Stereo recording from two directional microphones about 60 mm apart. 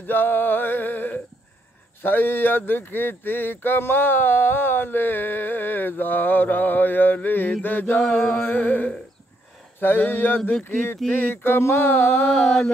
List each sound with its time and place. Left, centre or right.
0.0 s a sound: left
2.0 s speech: left
8.1 s chant: centre
8.4 s music: left
9.8 s speech: left
12.3 s chant: centre